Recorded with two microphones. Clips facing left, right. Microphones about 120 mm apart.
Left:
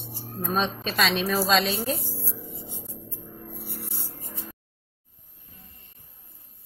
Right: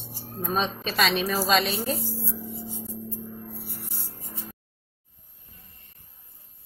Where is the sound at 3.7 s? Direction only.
60° left (ahead or behind).